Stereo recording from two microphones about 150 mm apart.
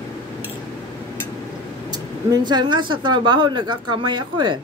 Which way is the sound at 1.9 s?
25° right (ahead or behind).